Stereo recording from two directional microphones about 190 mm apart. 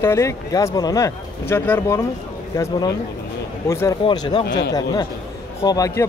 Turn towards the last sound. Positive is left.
turn(degrees=15)  # may be behind; listen again after turning